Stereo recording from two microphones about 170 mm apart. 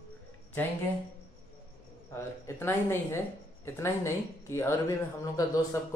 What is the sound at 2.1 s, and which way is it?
Speech, 15° left (ahead or behind).